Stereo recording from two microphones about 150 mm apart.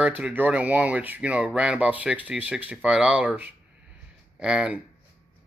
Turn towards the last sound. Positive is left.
turn(degrees=-5)  # may be behind; listen again after turning